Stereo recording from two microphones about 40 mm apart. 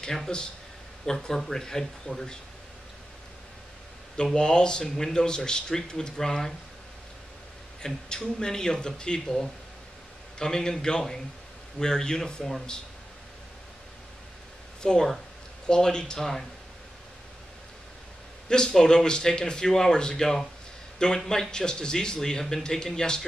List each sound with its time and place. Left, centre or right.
0.3 s speech: centre
4.2 s speech: centre
7.8 s speech: centre
10.4 s speech: centre
14.8 s speech: centre
18.5 s speech: centre